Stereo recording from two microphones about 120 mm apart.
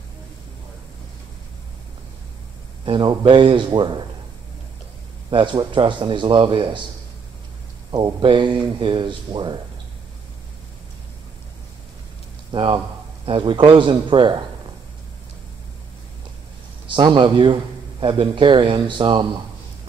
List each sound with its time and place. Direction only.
2.8 s speech: 40° right (ahead or behind)
5.3 s speech: 40° right (ahead or behind)
7.9 s speech: 40° right (ahead or behind)
12.4 s a man's voice: 40° right (ahead or behind)
16.8 s speech: 40° right (ahead or behind)